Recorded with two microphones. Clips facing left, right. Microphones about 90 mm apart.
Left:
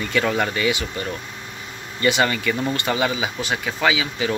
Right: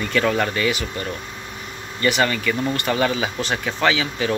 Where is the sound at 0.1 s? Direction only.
10° left (ahead or behind).